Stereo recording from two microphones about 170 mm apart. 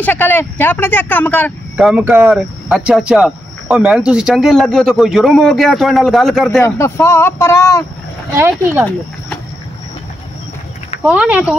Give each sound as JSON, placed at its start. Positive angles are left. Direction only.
{"t": 0.0, "sound": "speech", "side_deg": 10}
{"t": 1.8, "sound": "speech", "side_deg": -5}
{"t": 6.6, "sound": "speech", "side_deg": 15}
{"t": 8.4, "sound": "speech", "side_deg": -15}
{"t": 11.0, "sound": "speech", "side_deg": -10}